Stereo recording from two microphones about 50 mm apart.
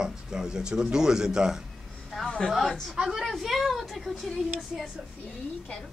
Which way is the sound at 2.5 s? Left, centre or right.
Centre.